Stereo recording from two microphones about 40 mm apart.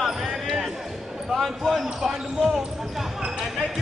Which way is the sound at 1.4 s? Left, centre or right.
Centre.